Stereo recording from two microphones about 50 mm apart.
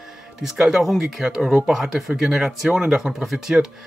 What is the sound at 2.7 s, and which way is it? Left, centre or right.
Speech, centre.